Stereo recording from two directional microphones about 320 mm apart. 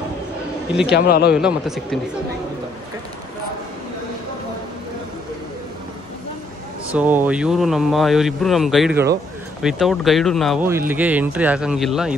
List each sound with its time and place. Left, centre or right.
0.8 s a man's voice: left
1.3 s speech: centre
6.9 s speech: centre